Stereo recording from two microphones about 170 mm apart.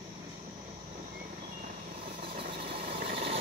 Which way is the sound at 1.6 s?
55° right (ahead or behind).